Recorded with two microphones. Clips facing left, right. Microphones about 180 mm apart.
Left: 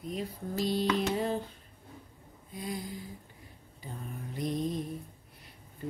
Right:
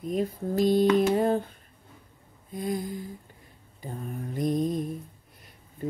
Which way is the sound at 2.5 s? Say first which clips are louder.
Right 7 dB; 50° right (ahead or behind).